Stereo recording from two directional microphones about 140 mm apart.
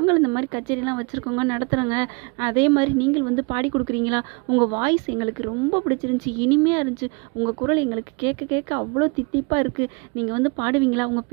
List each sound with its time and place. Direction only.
0.0 s speech: 25° right (ahead or behind)